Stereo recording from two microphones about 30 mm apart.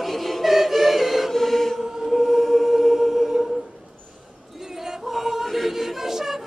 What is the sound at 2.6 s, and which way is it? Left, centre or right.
Music, centre.